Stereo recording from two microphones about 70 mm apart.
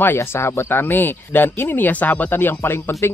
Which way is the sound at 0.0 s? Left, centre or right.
Left.